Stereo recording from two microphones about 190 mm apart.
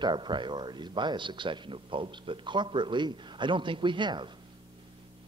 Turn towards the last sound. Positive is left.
turn(degrees=-25)  # may be behind; listen again after turning